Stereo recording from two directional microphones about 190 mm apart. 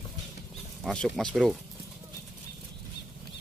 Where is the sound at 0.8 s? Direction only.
Centre (ahead or behind).